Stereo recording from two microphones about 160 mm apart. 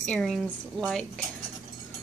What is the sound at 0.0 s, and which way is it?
A woman's voice, 5° left (ahead or behind).